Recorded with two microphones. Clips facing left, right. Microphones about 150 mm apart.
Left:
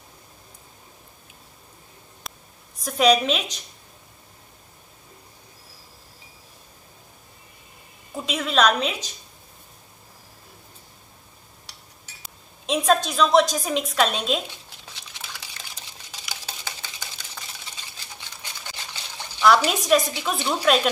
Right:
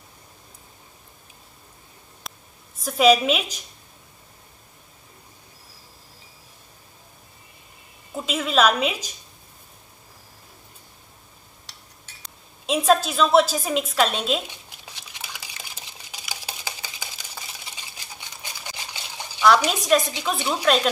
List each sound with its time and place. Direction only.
2.2 s a sound: centre (ahead or behind)
8.1 s a woman's voice: 5° right (ahead or behind)
11.6 s a sound: 10° left (ahead or behind)
12.6 s a woman's voice: centre (ahead or behind)
15.2 s water: 10° right (ahead or behind)
16.1 s a sound: 10° right (ahead or behind)
19.4 s a woman's voice: centre (ahead or behind)
20.3 s a woman's voice: 15° right (ahead or behind)
20.6 s a woman's voice: 5° left (ahead or behind)